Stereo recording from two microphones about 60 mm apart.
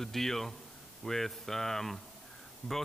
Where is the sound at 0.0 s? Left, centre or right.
Centre.